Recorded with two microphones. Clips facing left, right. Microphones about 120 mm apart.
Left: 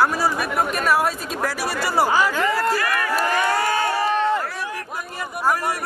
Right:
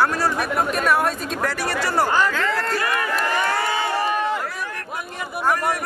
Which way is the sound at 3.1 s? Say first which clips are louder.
Left 2 dB; 10° left (ahead or behind).